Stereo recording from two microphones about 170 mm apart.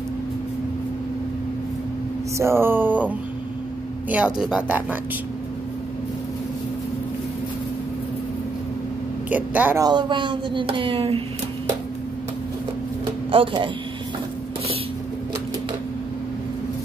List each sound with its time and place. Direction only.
2.3 s speech: 15° right (ahead or behind)
9.3 s speech: 10° right (ahead or behind)
9.8 s speech: 25° right (ahead or behind)
13.3 s speech: 30° right (ahead or behind)